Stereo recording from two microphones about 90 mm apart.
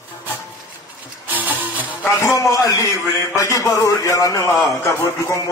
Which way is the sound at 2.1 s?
35° left (ahead or behind).